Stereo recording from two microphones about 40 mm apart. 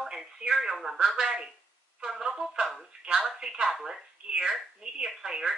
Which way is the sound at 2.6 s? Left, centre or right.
Centre.